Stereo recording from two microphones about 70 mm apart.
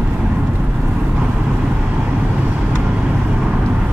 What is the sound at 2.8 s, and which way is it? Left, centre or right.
Vehicle, centre.